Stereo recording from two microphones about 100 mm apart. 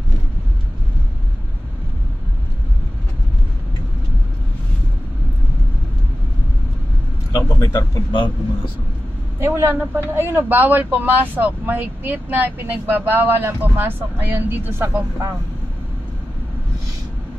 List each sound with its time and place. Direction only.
7.3 s a sound: 35° left (ahead or behind)
8.1 s speech: 50° left (ahead or behind)
9.4 s speech: 25° right (ahead or behind)